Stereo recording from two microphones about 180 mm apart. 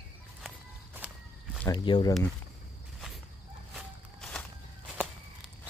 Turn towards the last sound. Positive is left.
turn(degrees=-5)  # may be behind; listen again after turning